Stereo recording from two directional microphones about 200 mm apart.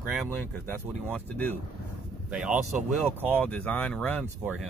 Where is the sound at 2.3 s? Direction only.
5° right (ahead or behind).